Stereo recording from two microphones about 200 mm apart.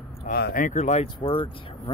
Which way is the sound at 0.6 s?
35° left (ahead or behind).